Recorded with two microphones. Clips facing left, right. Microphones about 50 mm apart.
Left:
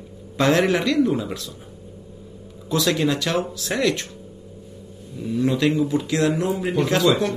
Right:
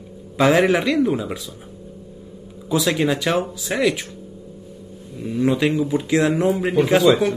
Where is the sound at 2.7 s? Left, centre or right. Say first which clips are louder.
Right 1 dB; centre.